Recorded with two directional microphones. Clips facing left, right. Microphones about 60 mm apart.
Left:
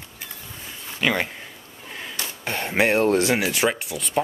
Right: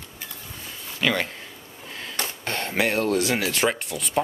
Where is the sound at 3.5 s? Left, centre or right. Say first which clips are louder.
Left 1 dB; centre.